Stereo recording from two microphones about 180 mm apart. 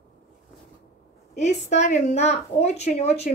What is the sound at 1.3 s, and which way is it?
A woman's voice, 40° left (ahead or behind).